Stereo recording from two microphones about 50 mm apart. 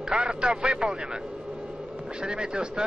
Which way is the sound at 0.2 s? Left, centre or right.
Centre.